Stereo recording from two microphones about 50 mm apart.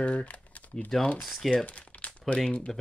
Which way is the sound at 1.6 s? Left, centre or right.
Left.